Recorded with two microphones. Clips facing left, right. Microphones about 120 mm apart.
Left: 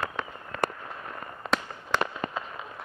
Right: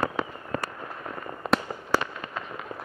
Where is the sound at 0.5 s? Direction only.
40° right (ahead or behind).